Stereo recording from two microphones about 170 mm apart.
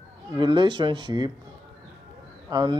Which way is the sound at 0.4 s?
30° right (ahead or behind).